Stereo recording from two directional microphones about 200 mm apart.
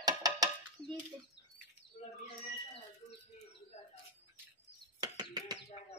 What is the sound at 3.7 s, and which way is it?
Bird, 35° left (ahead or behind).